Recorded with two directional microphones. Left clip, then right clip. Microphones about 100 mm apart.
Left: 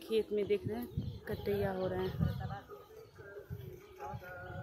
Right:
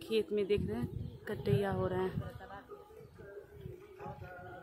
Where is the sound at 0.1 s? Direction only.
45° right (ahead or behind).